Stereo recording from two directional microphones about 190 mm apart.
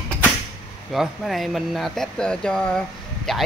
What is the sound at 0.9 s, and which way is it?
Speech, centre (ahead or behind).